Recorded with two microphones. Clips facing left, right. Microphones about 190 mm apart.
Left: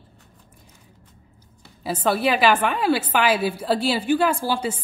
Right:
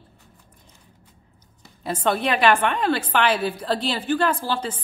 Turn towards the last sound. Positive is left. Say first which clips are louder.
# left 2 dB
turn(degrees=10)  # may be behind; listen again after turning